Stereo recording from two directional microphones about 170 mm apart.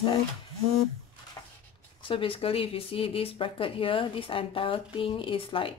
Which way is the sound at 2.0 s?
30° left (ahead or behind).